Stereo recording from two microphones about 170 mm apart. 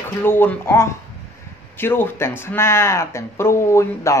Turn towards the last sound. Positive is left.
turn(degrees=15)  # may be behind; listen again after turning